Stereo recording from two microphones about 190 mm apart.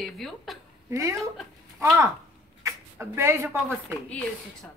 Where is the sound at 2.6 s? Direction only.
15° right (ahead or behind).